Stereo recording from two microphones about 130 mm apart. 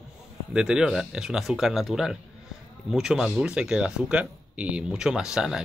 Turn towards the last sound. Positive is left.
turn(degrees=-5)  # may be behind; listen again after turning